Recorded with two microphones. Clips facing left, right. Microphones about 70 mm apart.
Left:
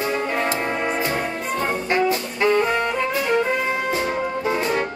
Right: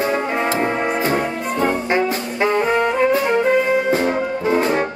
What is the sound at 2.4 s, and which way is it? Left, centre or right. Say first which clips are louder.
Saxophone: right 1 dB; right.